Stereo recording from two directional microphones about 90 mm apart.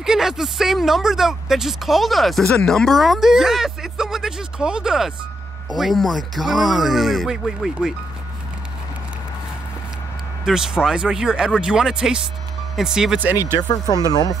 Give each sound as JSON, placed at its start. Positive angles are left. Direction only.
{"t": 0.0, "sound": "speech", "side_deg": -5}
{"t": 10.4, "sound": "speech", "side_deg": -5}
{"t": 13.6, "sound": "speech", "side_deg": 50}